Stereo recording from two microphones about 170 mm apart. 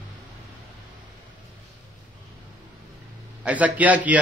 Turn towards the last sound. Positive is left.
turn(degrees=-10)  # may be behind; listen again after turning